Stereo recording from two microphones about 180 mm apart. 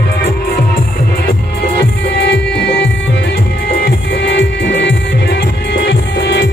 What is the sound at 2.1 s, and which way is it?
Music, 75° left (ahead or behind).